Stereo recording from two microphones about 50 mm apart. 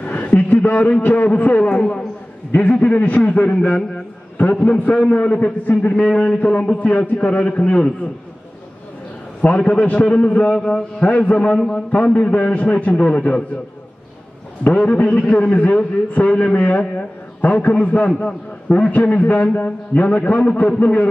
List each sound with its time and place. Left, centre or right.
0.0 s a sound: left
1.8 s a man's voice: centre
2.5 s a man's voice: left
5.1 s a man's voice: left
9.6 s a man's voice: left
10.5 s a man's voice: centre
11.1 s a man's voice: left
11.5 s a man's voice: centre
14.9 s a man's voice: left
16.1 s a man's voice: left